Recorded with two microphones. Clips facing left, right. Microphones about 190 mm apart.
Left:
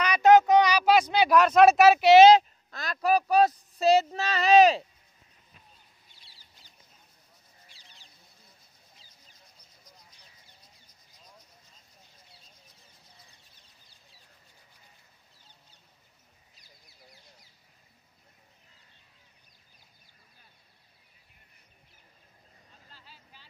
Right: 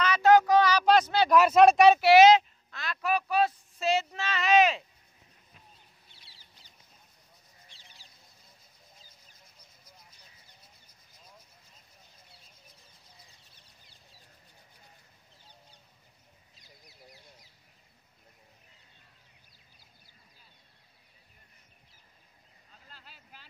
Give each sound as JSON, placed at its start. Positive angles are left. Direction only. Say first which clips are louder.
{"t": 0.0, "sound": "child singing", "louder": "left 2 dB", "side_deg": 15}
{"t": 0.8, "sound": "a sound", "louder": "left 1 dB", "side_deg": 10}
{"t": 1.3, "sound": "speech", "louder": "even", "side_deg": -5}
{"t": 2.0, "sound": "speech", "louder": "left 3 dB", "side_deg": 20}
{"t": 2.2, "sound": "speech", "louder": "left 3 dB", "side_deg": 40}